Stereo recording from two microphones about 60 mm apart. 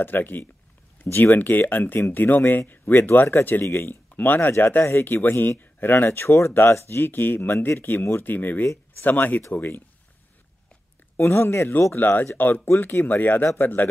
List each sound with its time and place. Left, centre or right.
0.0 s speech: left
11.1 s speech: left